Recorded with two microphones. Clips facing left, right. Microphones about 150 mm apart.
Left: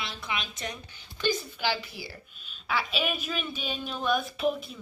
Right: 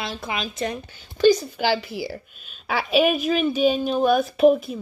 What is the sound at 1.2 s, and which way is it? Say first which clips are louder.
Speech: right 11 dB; 90° right.